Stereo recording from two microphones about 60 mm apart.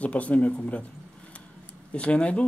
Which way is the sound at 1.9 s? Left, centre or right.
Centre.